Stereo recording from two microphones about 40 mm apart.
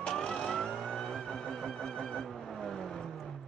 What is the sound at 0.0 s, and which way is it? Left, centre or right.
Vehicle, centre.